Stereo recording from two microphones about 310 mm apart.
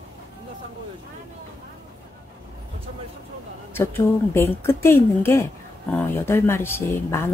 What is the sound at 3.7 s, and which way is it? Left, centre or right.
Speech, centre.